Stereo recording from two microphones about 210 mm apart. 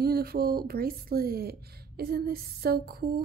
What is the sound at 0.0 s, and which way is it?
Speech, 45° right (ahead or behind).